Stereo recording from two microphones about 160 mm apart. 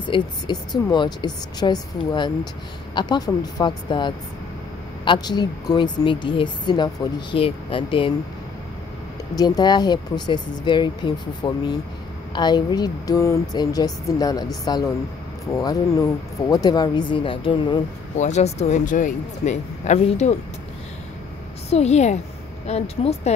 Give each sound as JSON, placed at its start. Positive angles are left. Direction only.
{"t": 0.0, "sound": "a woman's voice", "side_deg": 30}
{"t": 9.3, "sound": "a woman's voice", "side_deg": 25}
{"t": 18.1, "sound": "speech", "side_deg": 45}
{"t": 21.6, "sound": "speech", "side_deg": 40}